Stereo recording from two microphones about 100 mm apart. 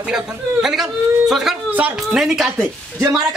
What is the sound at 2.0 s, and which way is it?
Speech, 5° right (ahead or behind).